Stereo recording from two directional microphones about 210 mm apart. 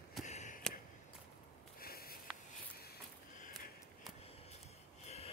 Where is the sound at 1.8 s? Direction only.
45° left (ahead or behind).